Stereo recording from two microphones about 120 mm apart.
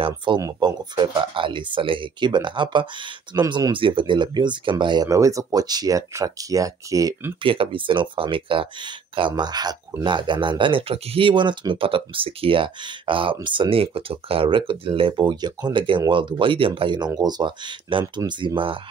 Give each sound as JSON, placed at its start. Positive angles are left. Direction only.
{"t": 0.0, "sound": "speech", "side_deg": -40}
{"t": 7.4, "sound": "speech", "side_deg": -50}
{"t": 9.3, "sound": "speech", "side_deg": -35}